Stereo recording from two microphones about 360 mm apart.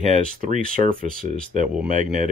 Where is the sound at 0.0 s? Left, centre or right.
Right.